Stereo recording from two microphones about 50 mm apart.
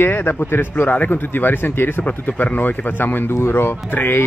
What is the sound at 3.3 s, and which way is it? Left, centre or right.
Speech, left.